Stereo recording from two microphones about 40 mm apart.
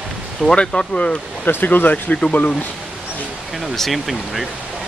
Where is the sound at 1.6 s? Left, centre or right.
Left.